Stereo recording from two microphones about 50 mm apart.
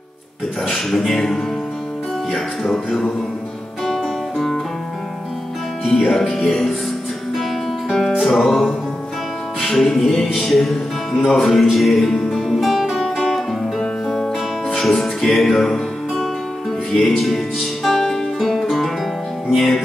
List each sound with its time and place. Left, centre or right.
0.7 s music: centre
2.3 s speech: centre
3.8 s music: centre
5.9 s music: centre
7.9 s music: centre
13.7 s music: centre
14.7 s music: centre